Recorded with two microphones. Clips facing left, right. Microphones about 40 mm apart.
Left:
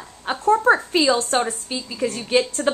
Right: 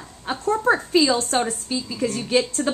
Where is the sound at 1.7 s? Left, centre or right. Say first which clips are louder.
Right 2 dB; left.